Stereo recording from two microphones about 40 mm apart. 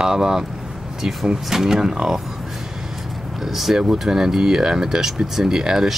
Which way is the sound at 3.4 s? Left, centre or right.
Centre.